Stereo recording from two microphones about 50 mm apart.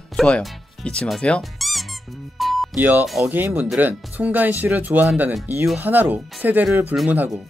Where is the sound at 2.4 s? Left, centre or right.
Centre.